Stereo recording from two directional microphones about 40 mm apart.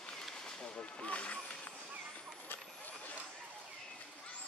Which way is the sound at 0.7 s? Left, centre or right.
Left.